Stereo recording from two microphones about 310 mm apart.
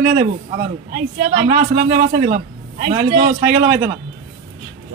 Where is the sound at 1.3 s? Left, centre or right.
Right.